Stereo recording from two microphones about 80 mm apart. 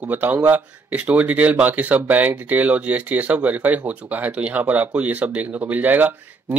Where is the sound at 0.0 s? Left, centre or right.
Right.